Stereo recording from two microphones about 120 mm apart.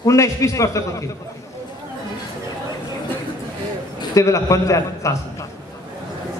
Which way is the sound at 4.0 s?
25° left (ahead or behind).